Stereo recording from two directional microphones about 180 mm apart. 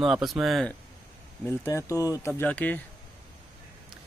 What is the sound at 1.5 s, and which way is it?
Speech, 15° left (ahead or behind).